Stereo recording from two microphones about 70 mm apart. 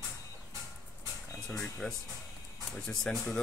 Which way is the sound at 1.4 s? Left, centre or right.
Centre.